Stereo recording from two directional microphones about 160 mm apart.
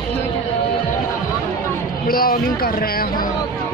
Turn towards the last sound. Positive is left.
turn(degrees=65)  # may be behind; listen again after turning